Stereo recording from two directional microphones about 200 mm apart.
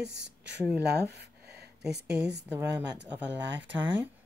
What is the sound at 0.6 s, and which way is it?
Speech, 5° right (ahead or behind).